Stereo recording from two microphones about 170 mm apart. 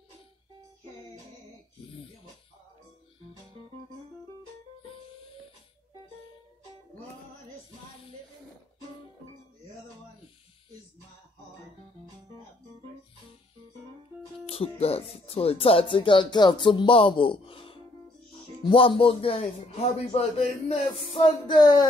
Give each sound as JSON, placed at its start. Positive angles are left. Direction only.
{"t": 14.4, "sound": "speech", "side_deg": 35}
{"t": 21.1, "sound": "music", "side_deg": 30}